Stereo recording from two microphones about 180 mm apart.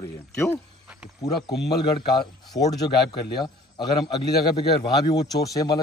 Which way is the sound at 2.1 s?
25° left (ahead or behind).